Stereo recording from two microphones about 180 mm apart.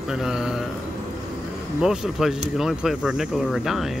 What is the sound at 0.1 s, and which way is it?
Mantra, 5° right (ahead or behind).